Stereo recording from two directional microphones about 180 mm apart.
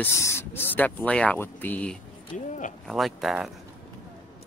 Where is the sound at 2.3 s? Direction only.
45° left (ahead or behind).